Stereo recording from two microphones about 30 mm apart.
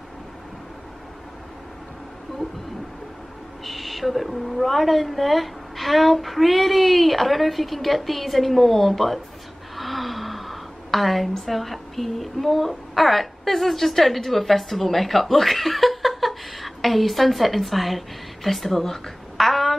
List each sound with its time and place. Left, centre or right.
3.6 s a woman's voice: centre
9.8 s a sound: centre
11.4 s a woman's voice: centre